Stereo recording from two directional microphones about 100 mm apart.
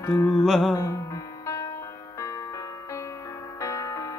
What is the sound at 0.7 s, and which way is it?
Music, 30° left (ahead or behind).